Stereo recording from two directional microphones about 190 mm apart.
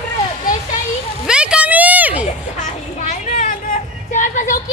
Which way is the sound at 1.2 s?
5° right (ahead or behind).